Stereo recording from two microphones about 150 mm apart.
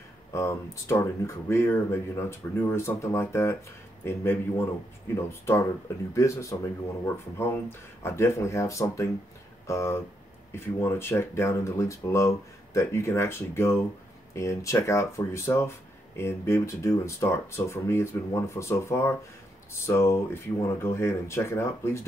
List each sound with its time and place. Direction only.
0.3 s speech: 20° left (ahead or behind)